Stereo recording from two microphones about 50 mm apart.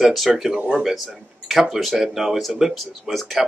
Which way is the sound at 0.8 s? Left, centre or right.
Centre.